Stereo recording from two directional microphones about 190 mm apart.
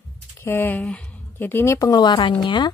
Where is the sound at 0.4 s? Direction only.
10° left (ahead or behind).